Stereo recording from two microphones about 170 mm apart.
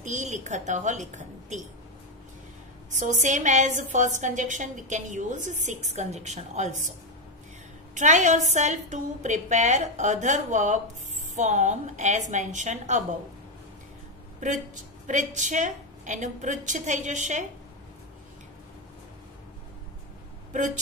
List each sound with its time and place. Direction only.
0.0 s a woman's voice: 45° right (ahead or behind)
2.9 s a woman's voice: 45° right (ahead or behind)
7.9 s a woman's voice: 45° right (ahead or behind)
15.0 s a woman's voice: 45° right (ahead or behind)
20.5 s a woman's voice: 45° right (ahead or behind)